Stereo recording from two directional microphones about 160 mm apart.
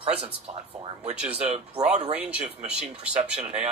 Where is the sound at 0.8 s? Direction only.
35° right (ahead or behind).